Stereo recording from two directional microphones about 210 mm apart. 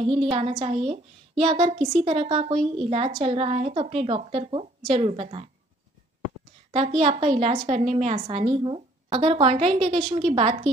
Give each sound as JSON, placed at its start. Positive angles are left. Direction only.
{"t": 0.3, "sound": "a woman's voice", "side_deg": -25}
{"t": 6.7, "sound": "a woman's voice", "side_deg": -30}